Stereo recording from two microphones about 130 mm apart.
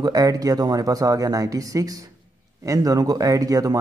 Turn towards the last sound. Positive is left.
turn(degrees=-25)  # may be behind; listen again after turning